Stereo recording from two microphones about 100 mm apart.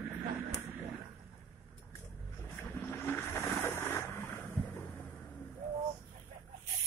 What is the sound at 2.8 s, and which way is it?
Vehicle, 20° left (ahead or behind).